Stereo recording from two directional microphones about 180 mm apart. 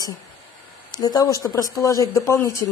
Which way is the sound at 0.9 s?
20° left (ahead or behind).